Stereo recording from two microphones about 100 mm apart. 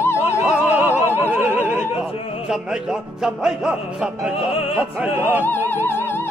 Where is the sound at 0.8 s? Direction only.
25° left (ahead or behind).